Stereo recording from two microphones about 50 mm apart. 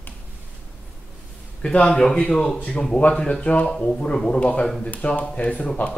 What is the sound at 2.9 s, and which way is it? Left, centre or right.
Speech, left.